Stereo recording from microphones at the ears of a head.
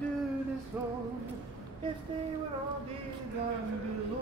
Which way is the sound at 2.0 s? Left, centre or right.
Right.